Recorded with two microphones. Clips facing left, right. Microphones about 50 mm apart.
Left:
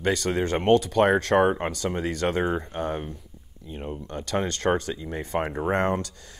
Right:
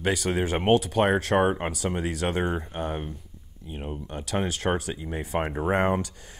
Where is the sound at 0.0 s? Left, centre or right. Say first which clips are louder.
Left 1 dB; centre.